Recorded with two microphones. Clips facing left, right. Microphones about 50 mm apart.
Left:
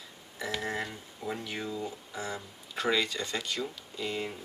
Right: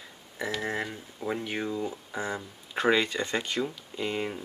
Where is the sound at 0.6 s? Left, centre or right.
Right.